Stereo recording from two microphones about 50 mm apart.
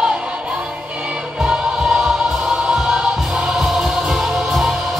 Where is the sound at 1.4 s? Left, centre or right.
Centre.